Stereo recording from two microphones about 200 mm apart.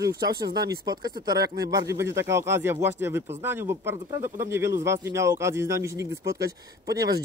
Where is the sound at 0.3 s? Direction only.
55° right (ahead or behind).